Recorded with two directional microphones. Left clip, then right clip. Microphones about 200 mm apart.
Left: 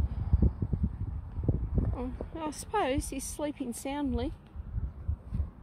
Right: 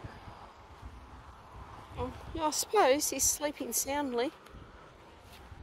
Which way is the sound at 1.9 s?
10° right (ahead or behind).